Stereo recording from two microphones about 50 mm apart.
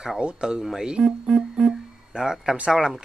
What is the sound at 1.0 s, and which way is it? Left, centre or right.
Speech, centre.